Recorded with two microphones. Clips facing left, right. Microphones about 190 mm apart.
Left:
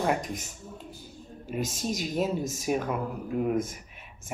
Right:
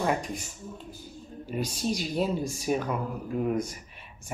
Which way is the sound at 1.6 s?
45° left (ahead or behind).